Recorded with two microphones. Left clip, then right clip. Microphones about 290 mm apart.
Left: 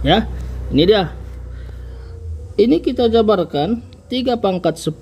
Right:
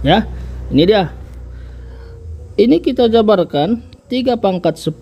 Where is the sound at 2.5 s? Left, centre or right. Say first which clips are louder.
Right 3 dB; right.